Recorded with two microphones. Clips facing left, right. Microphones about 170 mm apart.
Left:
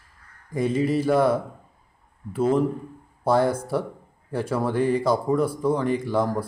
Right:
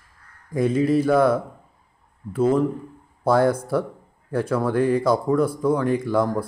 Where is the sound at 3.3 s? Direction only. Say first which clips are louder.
Right 2 dB; centre (ahead or behind).